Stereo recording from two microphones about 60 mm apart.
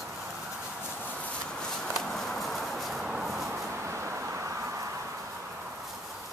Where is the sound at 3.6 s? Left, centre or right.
Right.